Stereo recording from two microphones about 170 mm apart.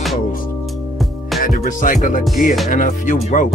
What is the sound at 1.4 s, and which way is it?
Music, 50° left (ahead or behind).